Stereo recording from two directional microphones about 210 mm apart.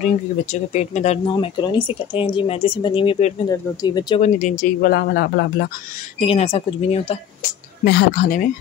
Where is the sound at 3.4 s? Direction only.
15° left (ahead or behind).